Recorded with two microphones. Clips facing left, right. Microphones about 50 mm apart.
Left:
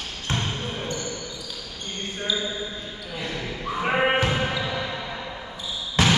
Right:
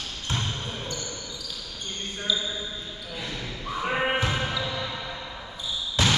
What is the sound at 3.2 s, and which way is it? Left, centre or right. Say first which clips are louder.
Basketball bounce: left 5 dB; left.